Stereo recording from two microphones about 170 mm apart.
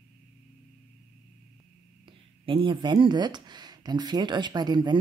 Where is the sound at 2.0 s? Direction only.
30° right (ahead or behind).